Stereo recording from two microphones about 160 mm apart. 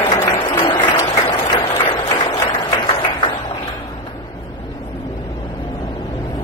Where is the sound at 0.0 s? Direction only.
30° left (ahead or behind).